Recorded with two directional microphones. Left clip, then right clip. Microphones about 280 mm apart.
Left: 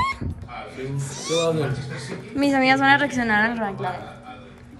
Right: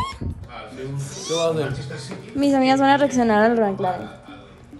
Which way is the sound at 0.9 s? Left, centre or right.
Centre.